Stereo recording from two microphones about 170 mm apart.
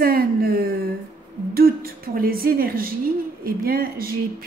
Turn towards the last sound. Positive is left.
turn(degrees=-60)  # may be behind; listen again after turning